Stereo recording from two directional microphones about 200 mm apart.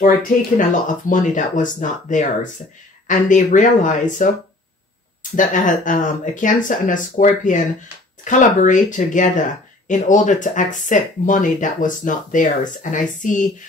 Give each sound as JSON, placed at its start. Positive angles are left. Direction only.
{"t": 0.6, "sound": "speech", "side_deg": 40}
{"t": 5.3, "sound": "speech", "side_deg": 40}